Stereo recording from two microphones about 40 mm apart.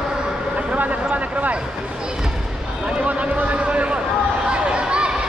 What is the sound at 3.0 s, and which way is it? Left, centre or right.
Speech, right.